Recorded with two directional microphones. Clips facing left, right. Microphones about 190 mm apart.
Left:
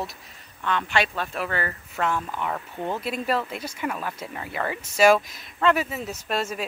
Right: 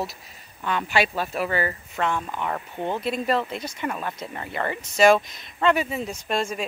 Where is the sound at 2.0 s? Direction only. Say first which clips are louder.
Even; 5° left (ahead or behind).